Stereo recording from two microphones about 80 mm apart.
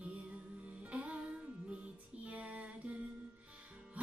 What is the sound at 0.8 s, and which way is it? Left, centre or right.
Music, centre.